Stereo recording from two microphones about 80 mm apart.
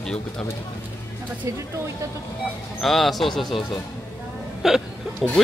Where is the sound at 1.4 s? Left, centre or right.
Right.